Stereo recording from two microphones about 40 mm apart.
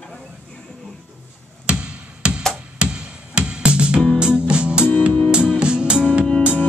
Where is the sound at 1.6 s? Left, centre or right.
Right.